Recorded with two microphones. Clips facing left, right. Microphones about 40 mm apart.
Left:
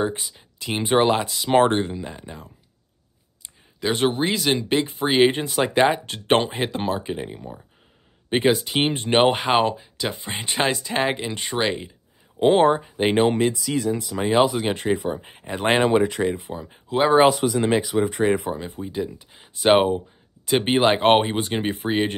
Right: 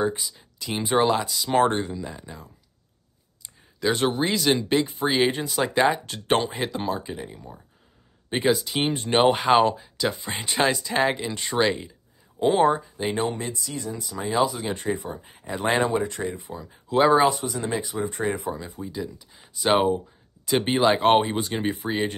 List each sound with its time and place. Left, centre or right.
0.2 s speech: left
3.8 s speech: centre
4.7 s speech: left
9.4 s speech: centre
12.4 s speech: left
12.9 s speech: left
13.8 s speech: left
16.5 s speech: left
17.3 s speech: left
17.6 s speech: left
18.5 s speech: left